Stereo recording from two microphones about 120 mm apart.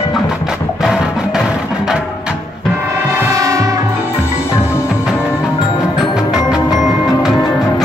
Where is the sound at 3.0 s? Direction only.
30° right (ahead or behind).